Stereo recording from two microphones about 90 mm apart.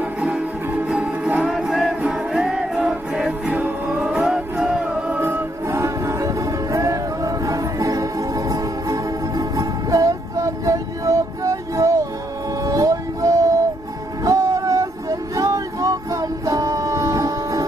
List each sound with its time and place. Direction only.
0.2 s music: 10° right (ahead or behind)
3.4 s music: 20° right (ahead or behind)
4.0 s music: 10° right (ahead or behind)
5.2 s music: 30° right (ahead or behind)
14.2 s a sound: 35° right (ahead or behind)